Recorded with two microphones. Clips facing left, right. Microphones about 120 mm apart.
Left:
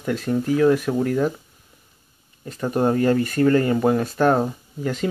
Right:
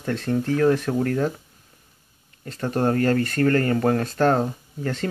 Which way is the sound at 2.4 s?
10° left (ahead or behind).